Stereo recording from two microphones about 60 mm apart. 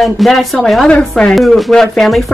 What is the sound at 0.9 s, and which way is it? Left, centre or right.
Speech, centre.